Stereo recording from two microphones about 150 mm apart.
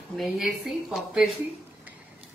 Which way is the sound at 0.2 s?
Centre (ahead or behind).